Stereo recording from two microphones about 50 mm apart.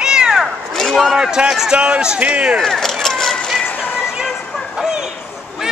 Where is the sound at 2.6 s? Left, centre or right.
Centre.